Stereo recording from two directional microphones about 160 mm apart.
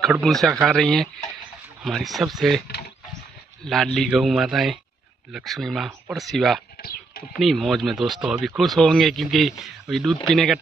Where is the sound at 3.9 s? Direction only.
Centre (ahead or behind).